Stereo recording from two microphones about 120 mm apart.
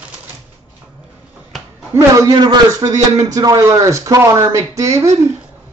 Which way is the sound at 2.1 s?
35° right (ahead or behind).